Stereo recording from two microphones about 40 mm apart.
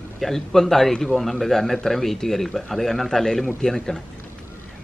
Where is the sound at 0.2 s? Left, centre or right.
Centre.